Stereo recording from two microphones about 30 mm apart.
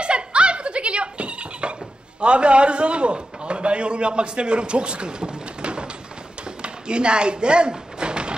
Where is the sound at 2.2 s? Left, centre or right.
Right.